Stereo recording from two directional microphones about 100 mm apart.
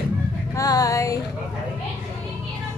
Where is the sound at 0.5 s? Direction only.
35° left (ahead or behind).